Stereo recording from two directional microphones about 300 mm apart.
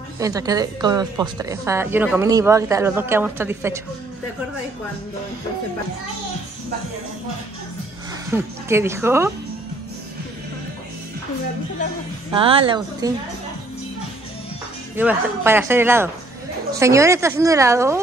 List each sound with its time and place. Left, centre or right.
0.2 s a woman's voice: centre
8.3 s a woman's voice: centre
12.4 s a woman's voice: centre
15.0 s a woman's voice: centre